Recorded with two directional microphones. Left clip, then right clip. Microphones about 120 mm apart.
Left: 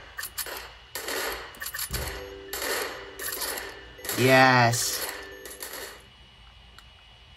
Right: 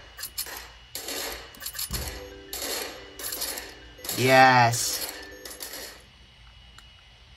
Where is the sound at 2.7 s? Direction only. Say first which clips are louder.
Left 4 dB; 50° left (ahead or behind).